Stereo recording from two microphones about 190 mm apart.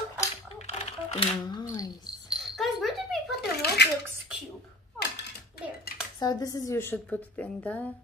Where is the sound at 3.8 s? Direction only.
60° left (ahead or behind).